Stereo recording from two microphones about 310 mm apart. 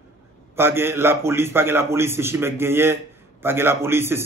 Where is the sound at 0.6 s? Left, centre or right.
Centre.